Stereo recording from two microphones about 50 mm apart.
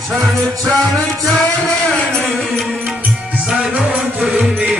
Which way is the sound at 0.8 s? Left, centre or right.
Left.